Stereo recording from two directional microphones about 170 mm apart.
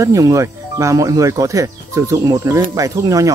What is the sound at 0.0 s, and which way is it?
Speech, 20° right (ahead or behind).